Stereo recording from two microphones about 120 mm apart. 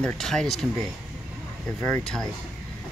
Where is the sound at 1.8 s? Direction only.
20° left (ahead or behind).